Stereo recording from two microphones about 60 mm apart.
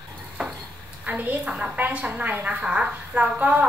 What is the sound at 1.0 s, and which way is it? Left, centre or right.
A woman's voice, right.